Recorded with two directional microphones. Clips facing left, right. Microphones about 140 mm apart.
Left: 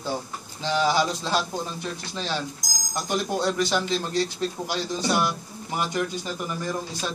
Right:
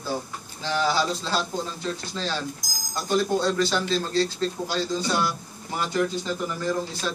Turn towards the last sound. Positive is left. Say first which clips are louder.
# right 3 dB
turn(degrees=15)  # may be behind; listen again after turning